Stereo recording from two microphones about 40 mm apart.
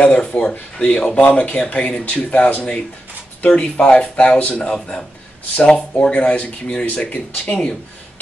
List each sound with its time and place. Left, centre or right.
0.0 s speech: left
1.6 s speech: left
4.7 s speech: centre